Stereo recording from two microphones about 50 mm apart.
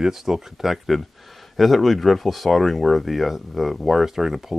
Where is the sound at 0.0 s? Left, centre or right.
Centre.